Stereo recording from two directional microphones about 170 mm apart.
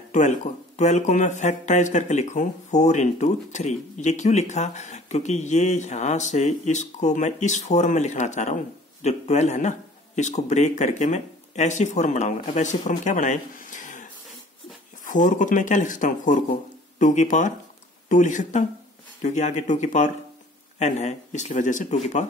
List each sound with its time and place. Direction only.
0.7 s speech: 45° left (ahead or behind)
15.0 s speech: 50° left (ahead or behind)